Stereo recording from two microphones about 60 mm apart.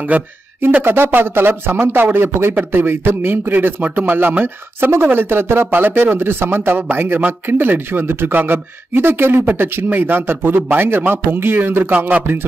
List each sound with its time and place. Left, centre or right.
0.1 s speech: right
12.1 s speech: right